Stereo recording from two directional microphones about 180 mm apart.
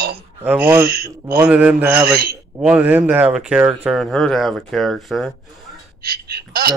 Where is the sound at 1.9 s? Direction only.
60° right (ahead or behind).